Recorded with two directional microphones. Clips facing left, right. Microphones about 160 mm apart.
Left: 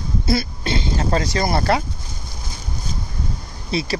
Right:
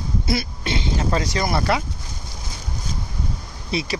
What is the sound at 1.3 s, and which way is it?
Speech, 35° left (ahead or behind).